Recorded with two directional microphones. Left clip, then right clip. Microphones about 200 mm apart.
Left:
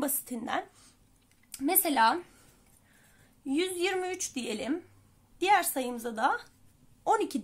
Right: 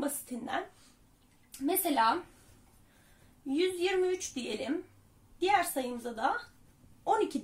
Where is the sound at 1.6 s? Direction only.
30° left (ahead or behind).